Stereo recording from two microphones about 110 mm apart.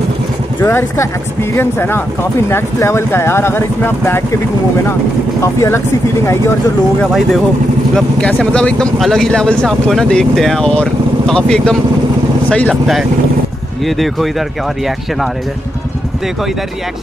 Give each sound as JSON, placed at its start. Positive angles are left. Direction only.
{"t": 0.6, "sound": "speech", "side_deg": 20}
{"t": 5.4, "sound": "speech", "side_deg": 25}
{"t": 7.9, "sound": "speech", "side_deg": 10}
{"t": 13.8, "sound": "speech", "side_deg": 0}